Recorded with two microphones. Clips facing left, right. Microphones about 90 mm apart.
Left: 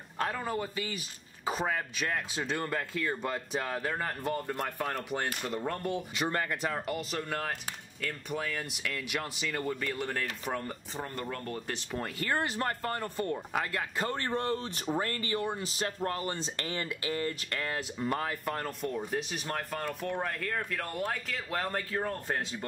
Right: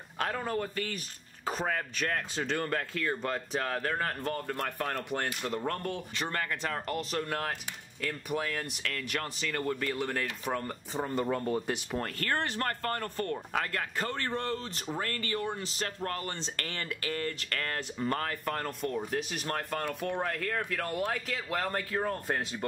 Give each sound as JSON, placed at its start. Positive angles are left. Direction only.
{"t": 0.2, "sound": "speech", "side_deg": 0}
{"t": 11.0, "sound": "speech", "side_deg": -20}
{"t": 11.9, "sound": "speech", "side_deg": 5}
{"t": 14.0, "sound": "speech", "side_deg": 20}